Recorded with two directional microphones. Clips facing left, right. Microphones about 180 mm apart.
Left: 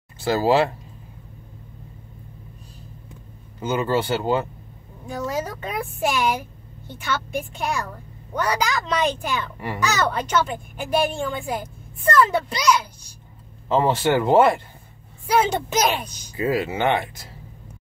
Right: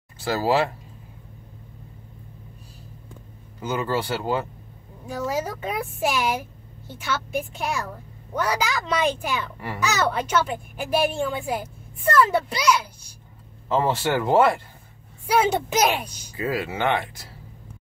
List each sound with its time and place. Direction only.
0.2 s speech: 25° left (ahead or behind)
3.6 s speech: 20° left (ahead or behind)
5.0 s a woman's voice: 5° right (ahead or behind)
13.7 s speech: 20° left (ahead or behind)
15.2 s a child's voice: 5° right (ahead or behind)
16.3 s speech: 25° left (ahead or behind)